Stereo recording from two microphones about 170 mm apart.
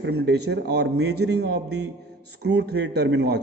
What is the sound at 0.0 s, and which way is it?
A man's voice, 75° right (ahead or behind).